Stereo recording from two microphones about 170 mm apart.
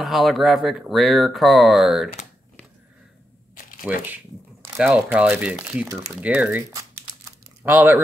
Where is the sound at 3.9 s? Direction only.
10° right (ahead or behind).